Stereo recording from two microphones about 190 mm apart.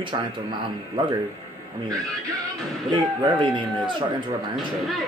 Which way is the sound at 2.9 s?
25° right (ahead or behind).